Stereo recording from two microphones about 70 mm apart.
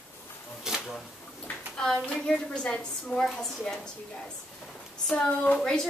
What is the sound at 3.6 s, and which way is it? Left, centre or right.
Speech, centre.